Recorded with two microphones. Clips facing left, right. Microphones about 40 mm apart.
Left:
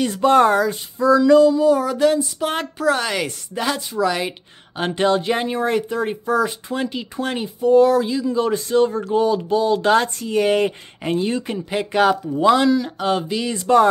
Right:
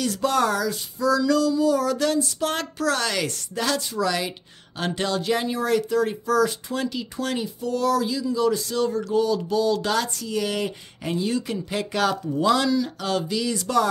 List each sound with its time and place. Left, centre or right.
0.0 s speech: left